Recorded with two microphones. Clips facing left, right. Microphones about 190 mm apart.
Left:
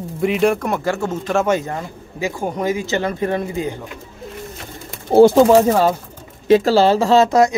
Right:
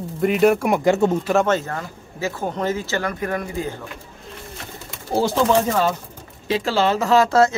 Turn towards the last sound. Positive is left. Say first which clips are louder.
# left 2 dB
turn(degrees=15)  # may be behind; listen again after turning